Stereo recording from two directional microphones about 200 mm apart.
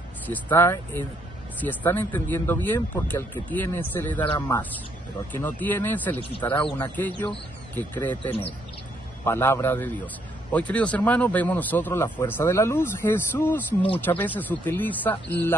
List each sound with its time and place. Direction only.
0.3 s speech: 10° left (ahead or behind)